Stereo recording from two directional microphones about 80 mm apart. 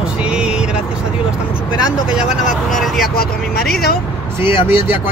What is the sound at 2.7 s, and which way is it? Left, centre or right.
Speech, centre.